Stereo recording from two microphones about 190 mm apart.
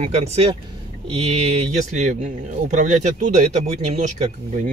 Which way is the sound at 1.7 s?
40° right (ahead or behind).